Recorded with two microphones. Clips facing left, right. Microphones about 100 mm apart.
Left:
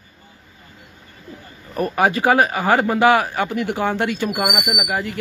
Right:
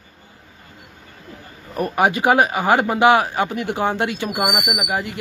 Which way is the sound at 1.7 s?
20° right (ahead or behind).